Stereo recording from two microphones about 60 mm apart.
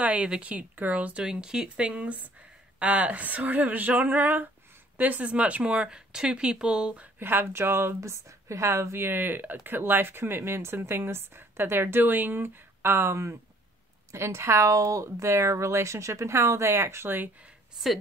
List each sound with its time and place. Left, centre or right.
0.0 s speech: right
1.2 s speech: centre
5.9 s speech: centre
7.2 s a woman's voice: right